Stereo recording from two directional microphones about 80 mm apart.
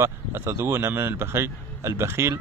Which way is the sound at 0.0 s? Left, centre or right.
Right.